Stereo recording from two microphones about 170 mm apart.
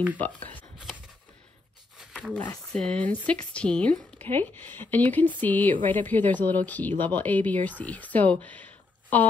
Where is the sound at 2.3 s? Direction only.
10° left (ahead or behind).